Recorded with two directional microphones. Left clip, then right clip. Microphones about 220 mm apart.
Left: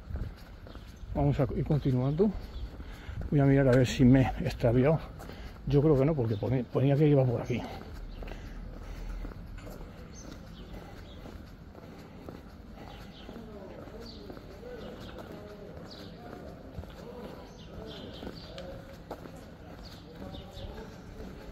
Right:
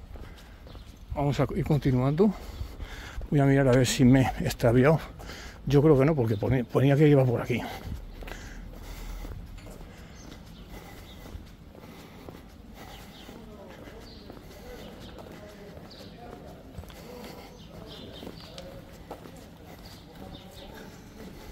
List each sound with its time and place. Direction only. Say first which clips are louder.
1.1 s speech: right 2 dB; 30° right (ahead or behind); by 2.3 s 45° right (ahead or behind)
3.3 s speech: right 2 dB; 20° right (ahead or behind)